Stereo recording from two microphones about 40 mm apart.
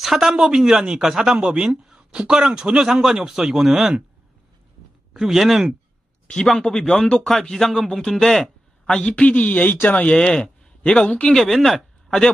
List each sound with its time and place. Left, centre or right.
0.0 s speech: centre
2.9 s speech: centre
3.6 s speech: centre
5.1 s speech: centre
6.7 s speech: left
8.8 s a woman's voice: left
10.1 s speech: centre
11.3 s speech: centre